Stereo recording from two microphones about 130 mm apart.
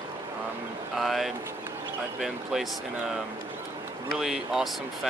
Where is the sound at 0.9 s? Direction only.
Centre (ahead or behind).